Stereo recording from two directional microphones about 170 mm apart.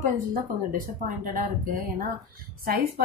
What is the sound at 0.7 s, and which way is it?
A woman's voice, 55° right (ahead or behind).